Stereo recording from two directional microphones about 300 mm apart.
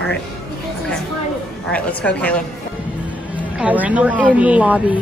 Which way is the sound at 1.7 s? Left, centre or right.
Centre.